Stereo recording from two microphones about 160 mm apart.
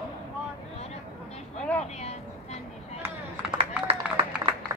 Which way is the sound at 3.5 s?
35° right (ahead or behind).